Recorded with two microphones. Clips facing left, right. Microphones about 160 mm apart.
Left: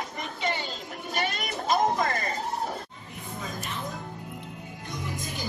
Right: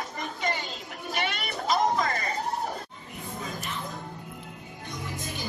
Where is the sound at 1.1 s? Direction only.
40° left (ahead or behind).